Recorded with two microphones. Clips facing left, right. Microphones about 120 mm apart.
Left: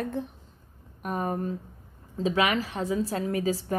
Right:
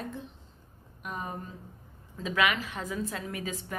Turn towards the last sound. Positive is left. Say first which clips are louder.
# left 9 dB
turn(degrees=35)  # may be behind; listen again after turning